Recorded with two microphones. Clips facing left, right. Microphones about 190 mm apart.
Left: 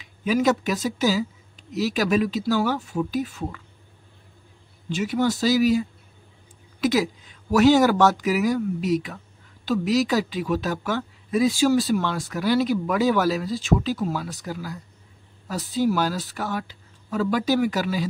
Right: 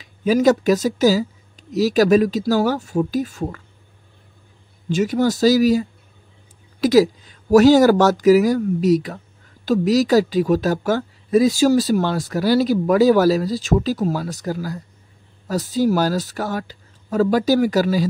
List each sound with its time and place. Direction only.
0.0 s speech: 40° right (ahead or behind)
4.8 s speech: 40° right (ahead or behind)